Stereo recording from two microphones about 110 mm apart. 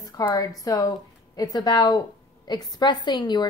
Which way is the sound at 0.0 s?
35° left (ahead or behind).